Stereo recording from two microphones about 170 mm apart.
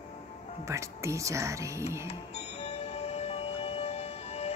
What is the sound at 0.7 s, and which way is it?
Speech, 15° right (ahead or behind).